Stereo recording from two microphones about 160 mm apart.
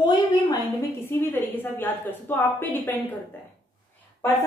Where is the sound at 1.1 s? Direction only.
15° left (ahead or behind).